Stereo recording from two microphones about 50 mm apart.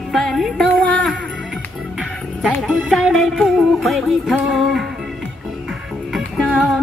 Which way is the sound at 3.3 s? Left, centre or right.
Centre.